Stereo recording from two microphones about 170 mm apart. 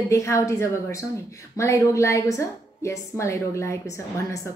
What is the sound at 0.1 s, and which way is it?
A woman's voice, 15° left (ahead or behind).